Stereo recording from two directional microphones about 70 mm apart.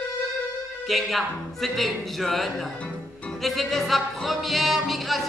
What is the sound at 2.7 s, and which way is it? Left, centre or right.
Music, centre.